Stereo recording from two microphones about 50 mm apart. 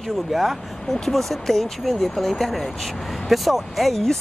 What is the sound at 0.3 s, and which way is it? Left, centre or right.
Speech, centre.